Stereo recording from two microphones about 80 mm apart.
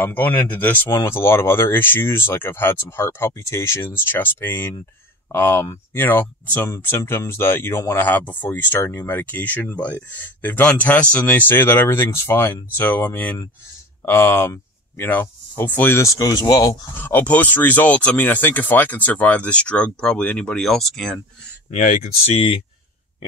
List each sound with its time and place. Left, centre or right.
0.0 s speech: left
0.8 s speech: left
16.0 s speech: left
17.0 s speech: left
20.6 s speech: centre